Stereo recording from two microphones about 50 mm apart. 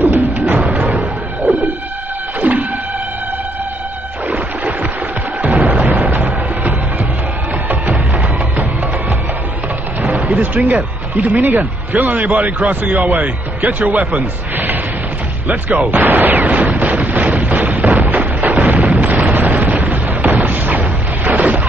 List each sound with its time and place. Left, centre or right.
0.0 s music: right
5.7 s music: right
10.0 s speech: right
15.9 s a sound: right
18.0 s artillery fire: right
18.9 s explosion: right
19.7 s artillery fire: right